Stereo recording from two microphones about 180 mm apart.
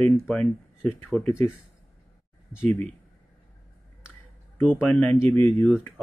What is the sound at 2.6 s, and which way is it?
Speech, 5° left (ahead or behind).